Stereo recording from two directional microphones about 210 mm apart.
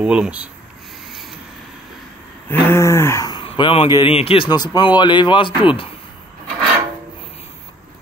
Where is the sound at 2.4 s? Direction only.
10° left (ahead or behind).